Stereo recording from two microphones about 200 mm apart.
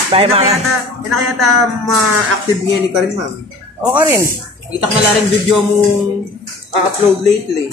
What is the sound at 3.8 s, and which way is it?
Speech, 10° right (ahead or behind).